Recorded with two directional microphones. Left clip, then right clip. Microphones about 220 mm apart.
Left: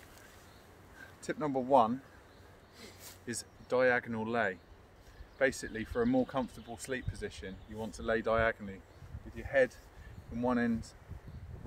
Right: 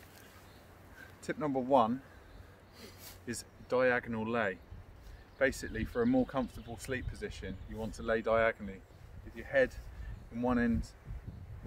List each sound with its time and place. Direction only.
1.2 s speech: 15° left (ahead or behind)